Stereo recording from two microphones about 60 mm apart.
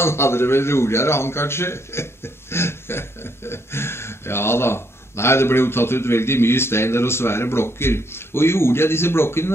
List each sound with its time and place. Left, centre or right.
0.0 s speech: left